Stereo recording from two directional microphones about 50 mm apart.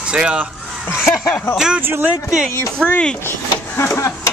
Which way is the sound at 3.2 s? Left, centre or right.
Left.